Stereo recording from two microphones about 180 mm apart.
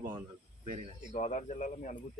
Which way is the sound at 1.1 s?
40° left (ahead or behind).